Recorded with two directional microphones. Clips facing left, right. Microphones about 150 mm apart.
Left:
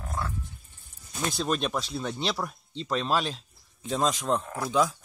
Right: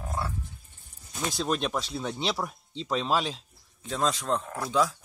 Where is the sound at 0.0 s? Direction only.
10° right (ahead or behind).